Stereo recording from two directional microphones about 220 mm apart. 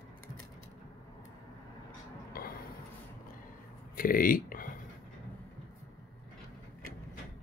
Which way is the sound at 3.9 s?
40° left (ahead or behind).